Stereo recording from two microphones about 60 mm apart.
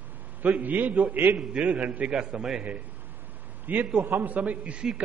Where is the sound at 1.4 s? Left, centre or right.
Centre.